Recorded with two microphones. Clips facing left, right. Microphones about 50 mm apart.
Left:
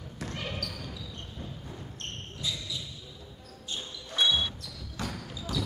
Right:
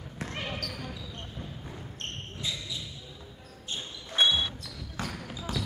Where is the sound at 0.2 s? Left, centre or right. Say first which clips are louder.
Right 1 dB; right.